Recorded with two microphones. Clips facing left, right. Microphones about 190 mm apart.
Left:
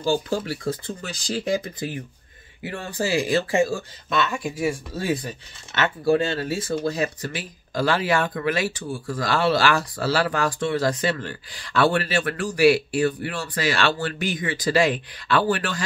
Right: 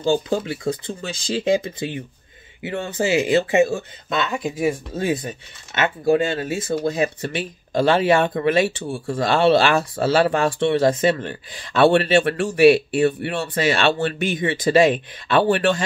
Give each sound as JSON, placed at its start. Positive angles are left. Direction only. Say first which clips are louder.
{"t": 0.0, "sound": "speech", "louder": "right 3 dB", "side_deg": -20}